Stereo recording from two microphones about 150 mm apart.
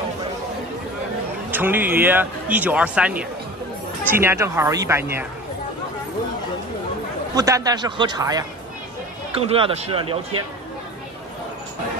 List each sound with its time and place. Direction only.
1.5 s a man's voice: 15° right (ahead or behind)
7.3 s speech: 25° right (ahead or behind)
9.3 s speech: 40° right (ahead or behind)